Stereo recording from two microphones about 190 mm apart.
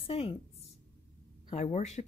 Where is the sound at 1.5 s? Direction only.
35° left (ahead or behind).